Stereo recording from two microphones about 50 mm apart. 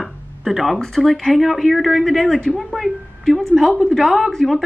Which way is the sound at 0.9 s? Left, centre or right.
Centre.